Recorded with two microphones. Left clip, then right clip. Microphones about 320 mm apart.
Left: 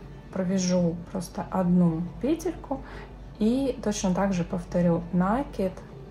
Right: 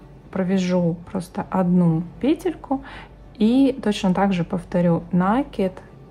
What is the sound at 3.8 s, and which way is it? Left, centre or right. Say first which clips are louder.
Speech: right 6 dB; right.